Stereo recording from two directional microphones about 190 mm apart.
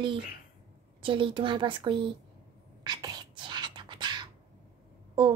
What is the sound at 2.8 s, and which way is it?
Whispering, 20° right (ahead or behind).